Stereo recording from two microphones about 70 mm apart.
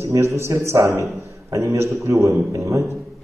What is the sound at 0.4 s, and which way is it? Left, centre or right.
A man's voice, right.